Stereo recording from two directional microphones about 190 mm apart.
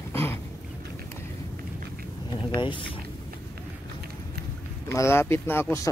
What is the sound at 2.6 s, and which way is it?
Speech, 25° left (ahead or behind).